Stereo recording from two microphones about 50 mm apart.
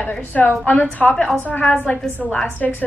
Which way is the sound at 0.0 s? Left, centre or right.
Left.